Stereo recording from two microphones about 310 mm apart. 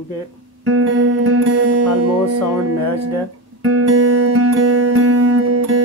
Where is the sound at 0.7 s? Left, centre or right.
Right.